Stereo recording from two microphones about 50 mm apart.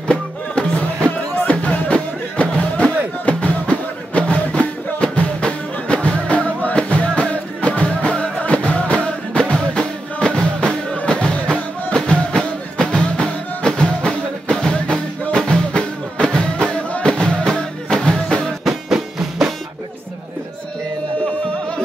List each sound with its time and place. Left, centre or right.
0.1 s music: left
10.2 s drum: centre
11.0 s music: centre
18.6 s music: centre